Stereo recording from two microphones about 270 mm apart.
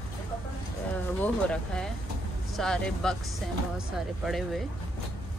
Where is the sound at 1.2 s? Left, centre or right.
Centre.